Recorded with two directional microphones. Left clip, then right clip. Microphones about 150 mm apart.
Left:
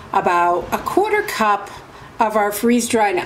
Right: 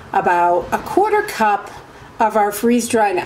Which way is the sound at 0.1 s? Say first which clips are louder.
Right 1 dB; centre (ahead or behind).